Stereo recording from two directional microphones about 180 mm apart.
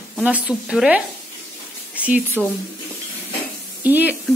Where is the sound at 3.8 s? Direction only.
10° right (ahead or behind).